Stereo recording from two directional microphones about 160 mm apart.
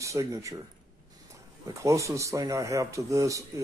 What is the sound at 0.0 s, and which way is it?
Speech, 20° right (ahead or behind).